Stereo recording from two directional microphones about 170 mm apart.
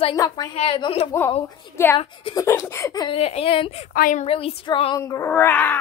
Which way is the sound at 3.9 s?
55° left (ahead or behind).